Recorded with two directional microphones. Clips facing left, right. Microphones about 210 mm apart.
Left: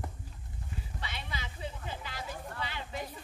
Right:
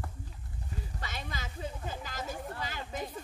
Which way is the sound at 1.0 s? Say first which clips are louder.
Right 1 dB; 45° right (ahead or behind).